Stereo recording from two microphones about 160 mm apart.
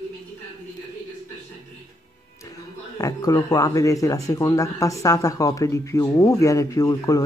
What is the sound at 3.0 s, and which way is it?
Speech, 25° left (ahead or behind).